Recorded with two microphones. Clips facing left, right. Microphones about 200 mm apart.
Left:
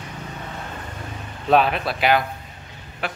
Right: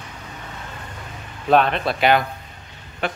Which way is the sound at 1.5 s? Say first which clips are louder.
Right 1 dB; 5° left (ahead or behind).